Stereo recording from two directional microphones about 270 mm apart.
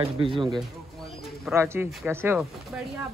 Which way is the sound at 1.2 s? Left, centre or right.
Centre.